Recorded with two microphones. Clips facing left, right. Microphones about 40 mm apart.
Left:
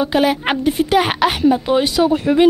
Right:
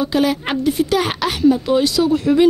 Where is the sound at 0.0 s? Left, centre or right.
Left.